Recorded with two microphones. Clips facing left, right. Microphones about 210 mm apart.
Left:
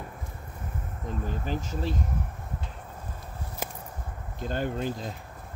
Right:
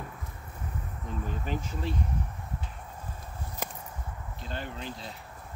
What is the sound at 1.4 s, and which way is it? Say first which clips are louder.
Speech: left 3 dB; 35° left (ahead or behind).